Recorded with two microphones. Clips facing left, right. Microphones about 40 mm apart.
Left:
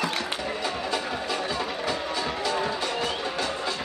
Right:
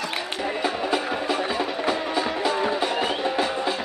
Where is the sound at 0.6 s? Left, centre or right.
Right.